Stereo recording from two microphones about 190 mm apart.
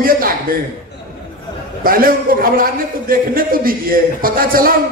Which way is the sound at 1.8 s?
50° right (ahead or behind).